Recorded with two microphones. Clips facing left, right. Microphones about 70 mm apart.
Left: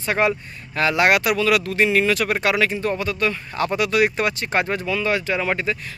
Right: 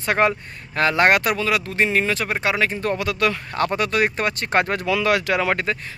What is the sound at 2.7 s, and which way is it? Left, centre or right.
Speech, right.